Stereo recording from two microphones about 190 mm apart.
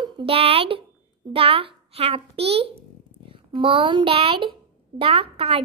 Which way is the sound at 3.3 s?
30° right (ahead or behind).